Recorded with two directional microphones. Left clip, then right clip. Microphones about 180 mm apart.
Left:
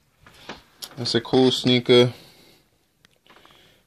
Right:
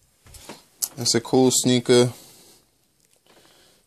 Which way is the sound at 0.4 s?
20° right (ahead or behind).